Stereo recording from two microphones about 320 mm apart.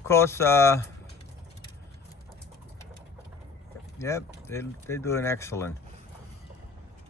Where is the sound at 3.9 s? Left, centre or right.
Centre.